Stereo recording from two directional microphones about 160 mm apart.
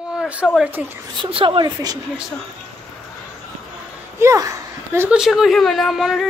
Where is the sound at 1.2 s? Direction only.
35° right (ahead or behind).